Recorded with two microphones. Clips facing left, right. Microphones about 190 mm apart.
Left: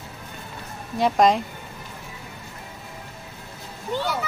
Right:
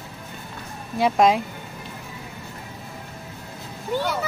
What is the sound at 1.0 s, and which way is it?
Speech, centre (ahead or behind).